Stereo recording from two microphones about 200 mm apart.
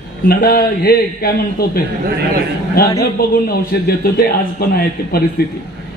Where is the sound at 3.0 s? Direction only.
50° left (ahead or behind).